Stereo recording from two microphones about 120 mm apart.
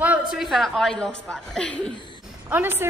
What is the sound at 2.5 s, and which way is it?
Speech, 15° right (ahead or behind).